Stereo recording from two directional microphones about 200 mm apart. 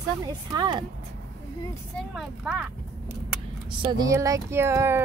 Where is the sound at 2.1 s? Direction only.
Centre (ahead or behind).